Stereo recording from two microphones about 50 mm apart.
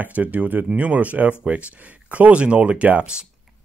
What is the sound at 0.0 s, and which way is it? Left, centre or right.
Speech, right.